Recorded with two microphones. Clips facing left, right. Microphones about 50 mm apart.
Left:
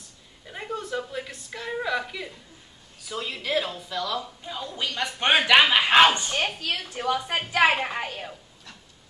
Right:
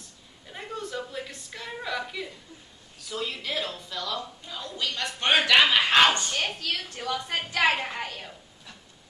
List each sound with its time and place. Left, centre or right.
0.5 s a sound: centre
3.1 s speech: centre
4.5 s a woman's voice: centre